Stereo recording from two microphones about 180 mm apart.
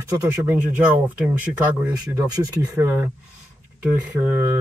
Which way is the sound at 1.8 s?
10° right (ahead or behind).